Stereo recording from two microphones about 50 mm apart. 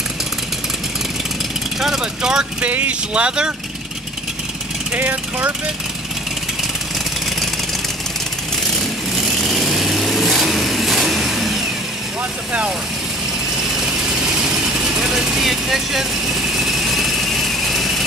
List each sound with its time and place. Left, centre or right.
1.8 s speech: centre
2.6 s speech: right
3.2 s speech: centre
4.9 s speech: right
9.1 s vehicle: centre
14.5 s vehicle: centre